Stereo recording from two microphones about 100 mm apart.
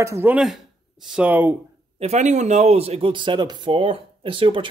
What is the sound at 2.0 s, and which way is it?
A man's voice, 90° right.